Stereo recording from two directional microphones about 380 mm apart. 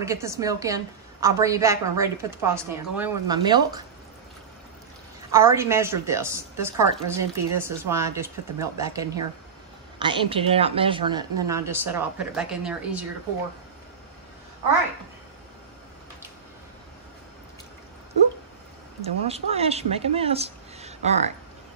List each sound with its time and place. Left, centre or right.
0.0 s a woman's voice: centre
5.3 s a woman's voice: centre
19.0 s speech: centre